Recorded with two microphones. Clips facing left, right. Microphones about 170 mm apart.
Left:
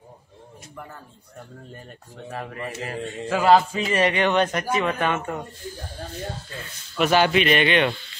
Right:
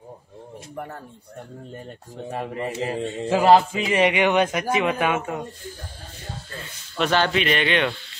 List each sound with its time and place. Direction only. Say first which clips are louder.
2.2 s speech: right 4 dB; 25° right (ahead or behind)
7.0 s a man's voice: left 2 dB; 10° left (ahead or behind)